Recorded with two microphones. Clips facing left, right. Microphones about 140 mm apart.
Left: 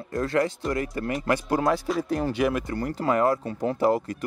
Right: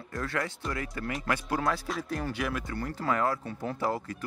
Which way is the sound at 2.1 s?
20° left (ahead or behind).